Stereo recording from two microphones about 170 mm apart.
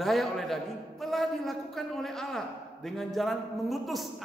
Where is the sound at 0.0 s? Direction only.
Centre (ahead or behind).